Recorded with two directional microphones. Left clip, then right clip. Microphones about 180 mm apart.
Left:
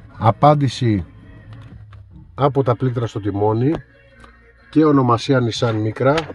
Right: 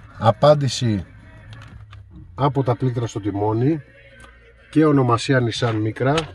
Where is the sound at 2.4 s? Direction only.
40° left (ahead or behind).